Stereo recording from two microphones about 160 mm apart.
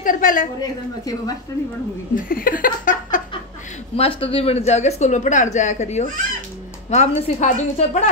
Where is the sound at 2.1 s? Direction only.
60° left (ahead or behind).